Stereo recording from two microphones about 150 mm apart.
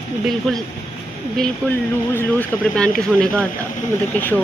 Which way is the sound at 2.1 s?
10° left (ahead or behind).